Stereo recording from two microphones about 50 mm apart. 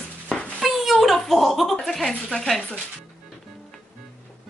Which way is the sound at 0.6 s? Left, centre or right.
Centre.